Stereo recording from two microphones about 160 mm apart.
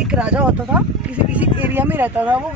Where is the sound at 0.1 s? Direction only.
5° right (ahead or behind).